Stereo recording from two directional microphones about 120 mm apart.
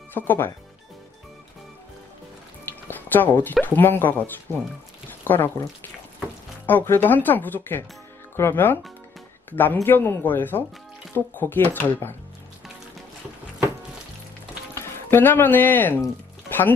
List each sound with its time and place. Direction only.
0.1 s speech: 15° left (ahead or behind)
2.6 s music: 15° left (ahead or behind)
3.6 s speech: 15° left (ahead or behind)
5.2 s speech: 15° left (ahead or behind)
6.6 s speech: 15° left (ahead or behind)
14.7 s speech: 20° left (ahead or behind)